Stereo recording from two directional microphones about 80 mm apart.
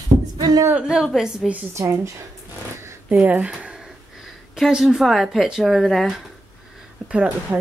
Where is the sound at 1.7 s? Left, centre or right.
Right.